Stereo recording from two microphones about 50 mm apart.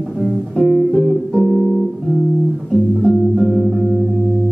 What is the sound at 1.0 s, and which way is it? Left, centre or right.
Music, centre.